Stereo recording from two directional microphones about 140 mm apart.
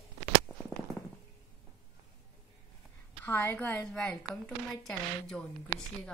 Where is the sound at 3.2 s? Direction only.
15° left (ahead or behind).